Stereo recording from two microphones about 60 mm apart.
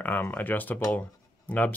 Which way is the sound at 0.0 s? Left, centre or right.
Left.